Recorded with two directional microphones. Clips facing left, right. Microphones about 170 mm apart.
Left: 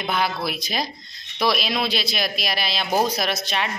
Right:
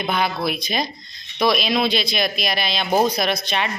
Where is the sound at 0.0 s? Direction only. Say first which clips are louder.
Right 2 dB; 5° left (ahead or behind).